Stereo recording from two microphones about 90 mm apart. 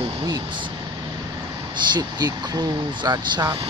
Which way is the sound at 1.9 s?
45° right (ahead or behind).